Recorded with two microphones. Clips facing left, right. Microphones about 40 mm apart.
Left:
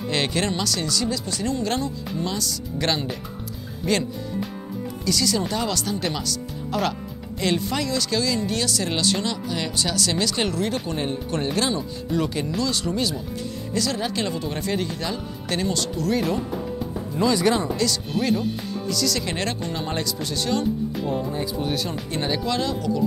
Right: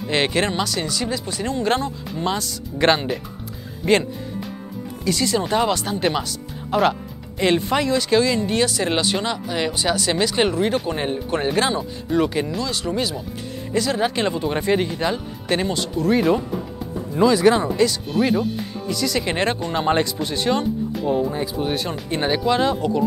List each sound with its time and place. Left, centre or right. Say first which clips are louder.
0.1 s speech: right 4 dB; right
5.0 s speech: right 3 dB; right; by 13.2 s centre
13.7 s speech: right 5 dB; right
17.1 s speech: right 5 dB; centre
18.9 s speech: right 3 dB; right